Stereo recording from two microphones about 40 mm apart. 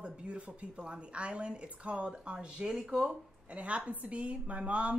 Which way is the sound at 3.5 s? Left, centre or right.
Right.